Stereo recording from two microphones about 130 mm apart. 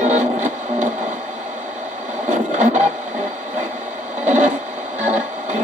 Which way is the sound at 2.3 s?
65° right (ahead or behind).